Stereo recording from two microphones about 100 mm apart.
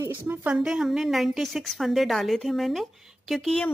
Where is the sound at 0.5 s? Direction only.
5° right (ahead or behind).